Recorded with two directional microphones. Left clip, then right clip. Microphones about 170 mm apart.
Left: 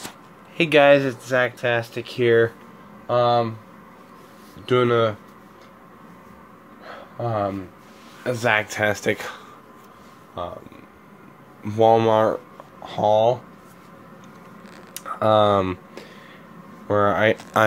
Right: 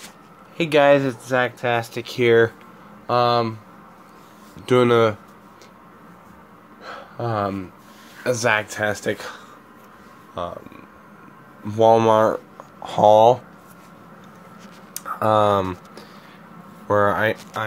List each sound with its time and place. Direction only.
0.6 s speech: centre (ahead or behind); by 3.5 s 20° right (ahead or behind)
4.6 s speech: 20° right (ahead or behind)
6.8 s a sound: 20° right (ahead or behind)
8.2 s speech: 5° right (ahead or behind)
10.4 s speech: 15° right (ahead or behind)
11.6 s speech: centre (ahead or behind)
11.9 s speech: 10° right (ahead or behind)
12.8 s speech: 25° right (ahead or behind)
15.0 s speech: centre (ahead or behind)
16.8 s speech: centre (ahead or behind)